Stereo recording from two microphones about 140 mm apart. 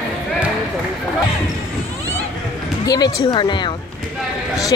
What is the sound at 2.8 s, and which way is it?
Speech, 25° left (ahead or behind).